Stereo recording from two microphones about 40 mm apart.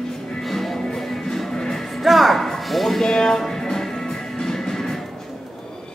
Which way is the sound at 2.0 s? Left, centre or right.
Centre.